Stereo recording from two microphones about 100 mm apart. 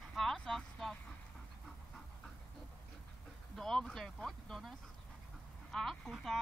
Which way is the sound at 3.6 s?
5° left (ahead or behind).